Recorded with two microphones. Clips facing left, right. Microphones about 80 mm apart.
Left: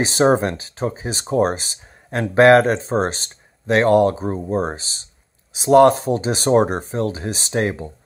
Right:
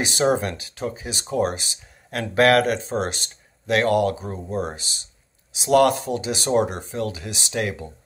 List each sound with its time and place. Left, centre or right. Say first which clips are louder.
0.0 s speech: left 5 dB; left